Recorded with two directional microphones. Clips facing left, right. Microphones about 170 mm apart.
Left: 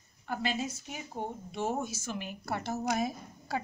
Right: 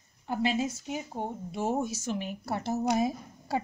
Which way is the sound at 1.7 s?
25° right (ahead or behind).